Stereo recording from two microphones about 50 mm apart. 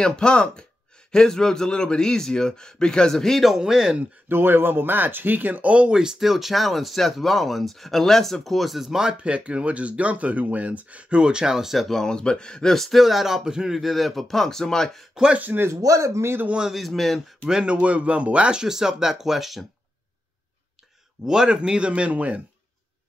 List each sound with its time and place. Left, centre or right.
0.0 s speech: centre
3.4 s speech: centre
4.3 s speech: right; by 9.1 s centre
9.1 s speech: right; by 11.9 s centre
11.9 s speech: centre
12.7 s speech: centre
15.7 s speech: right
16.7 s speech: centre
17.5 s speech: centre
18.6 s speech: centre
21.3 s speech: centre